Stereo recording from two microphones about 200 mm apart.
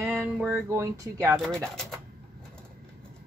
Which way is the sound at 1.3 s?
Centre (ahead or behind).